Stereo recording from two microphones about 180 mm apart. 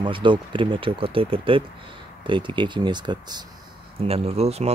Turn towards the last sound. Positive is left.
turn(degrees=-35)  # may be behind; listen again after turning